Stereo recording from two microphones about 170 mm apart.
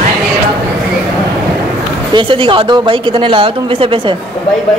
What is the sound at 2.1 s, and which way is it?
A woman's voice, 30° right (ahead or behind).